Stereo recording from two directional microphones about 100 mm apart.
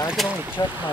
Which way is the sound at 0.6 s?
40° left (ahead or behind).